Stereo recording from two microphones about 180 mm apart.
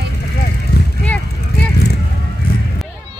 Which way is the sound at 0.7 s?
65° left (ahead or behind).